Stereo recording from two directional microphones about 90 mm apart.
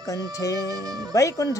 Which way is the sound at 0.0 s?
40° left (ahead or behind).